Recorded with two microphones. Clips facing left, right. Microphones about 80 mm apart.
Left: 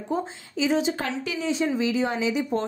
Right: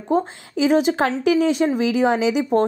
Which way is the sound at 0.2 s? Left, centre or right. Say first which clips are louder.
Right 6 dB; right.